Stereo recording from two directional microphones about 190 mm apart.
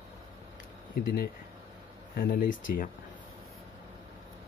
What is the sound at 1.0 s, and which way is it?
Speech, 50° left (ahead or behind).